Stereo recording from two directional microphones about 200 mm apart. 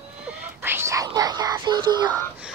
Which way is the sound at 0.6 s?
10° right (ahead or behind).